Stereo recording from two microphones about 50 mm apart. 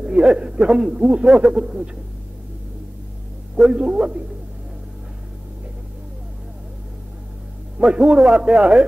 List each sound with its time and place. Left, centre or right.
0.0 s speech: centre
3.5 s speech: centre
7.8 s a man's voice: centre